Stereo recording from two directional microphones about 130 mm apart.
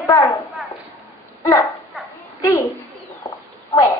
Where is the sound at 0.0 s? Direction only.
25° left (ahead or behind).